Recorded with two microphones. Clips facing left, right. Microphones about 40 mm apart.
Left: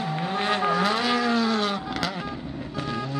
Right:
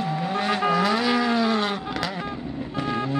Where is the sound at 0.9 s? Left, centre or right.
Centre.